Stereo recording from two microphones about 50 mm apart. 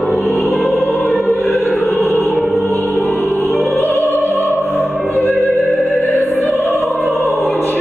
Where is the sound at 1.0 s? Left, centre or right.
Centre.